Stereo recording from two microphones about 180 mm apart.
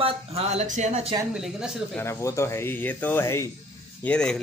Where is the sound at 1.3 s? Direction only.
5° right (ahead or behind).